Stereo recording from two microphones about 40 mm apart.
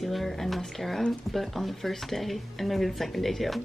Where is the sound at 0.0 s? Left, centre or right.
Centre.